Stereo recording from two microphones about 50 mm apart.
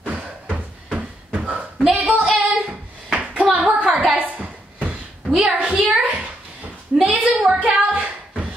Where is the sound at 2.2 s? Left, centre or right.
Centre.